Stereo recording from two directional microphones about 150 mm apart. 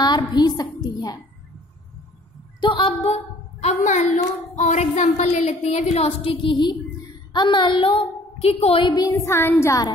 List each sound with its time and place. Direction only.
0.0 s a sound: 30° left (ahead or behind)
2.6 s a woman's voice: 35° left (ahead or behind)
3.6 s a woman's voice: 50° left (ahead or behind); by 9.9 s 20° left (ahead or behind)